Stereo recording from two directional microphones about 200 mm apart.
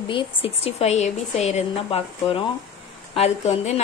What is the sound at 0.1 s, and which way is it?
A woman's voice, 25° left (ahead or behind).